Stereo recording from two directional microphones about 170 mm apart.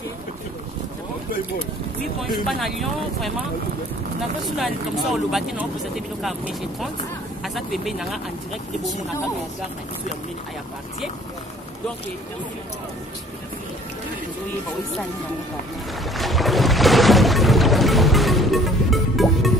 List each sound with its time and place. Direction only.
2.4 s speech: centre (ahead or behind)
4.6 s speech: centre (ahead or behind)
16.1 s music: centre (ahead or behind)